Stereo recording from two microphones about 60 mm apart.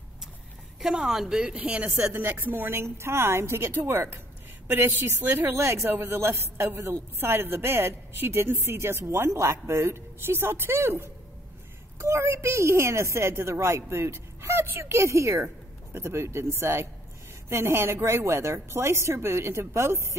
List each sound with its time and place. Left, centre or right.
0.7 s speech: centre
2.1 s a woman's voice: right